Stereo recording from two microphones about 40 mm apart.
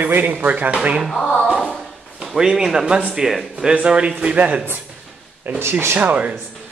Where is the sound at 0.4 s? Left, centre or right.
Right.